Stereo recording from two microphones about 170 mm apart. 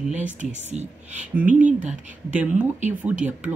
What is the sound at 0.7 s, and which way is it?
Speech, 45° right (ahead or behind).